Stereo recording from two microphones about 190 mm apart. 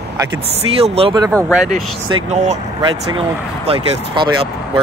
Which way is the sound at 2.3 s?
35° right (ahead or behind).